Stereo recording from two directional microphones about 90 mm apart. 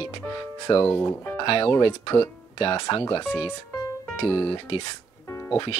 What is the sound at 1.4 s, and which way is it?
Speech, 70° left (ahead or behind).